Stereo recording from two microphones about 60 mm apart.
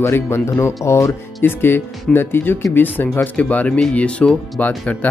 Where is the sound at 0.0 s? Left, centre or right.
Left.